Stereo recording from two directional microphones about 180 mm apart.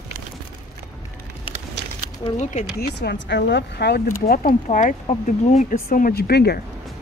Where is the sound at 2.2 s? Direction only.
40° left (ahead or behind).